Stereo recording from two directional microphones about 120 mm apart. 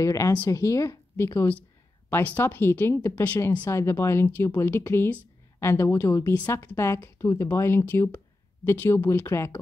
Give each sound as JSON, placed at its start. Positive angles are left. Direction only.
{"t": 0.0, "sound": "speech", "side_deg": 25}